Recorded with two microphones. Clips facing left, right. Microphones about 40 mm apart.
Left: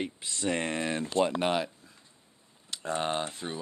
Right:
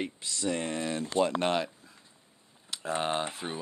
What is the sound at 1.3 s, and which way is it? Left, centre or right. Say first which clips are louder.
Speech: even; centre.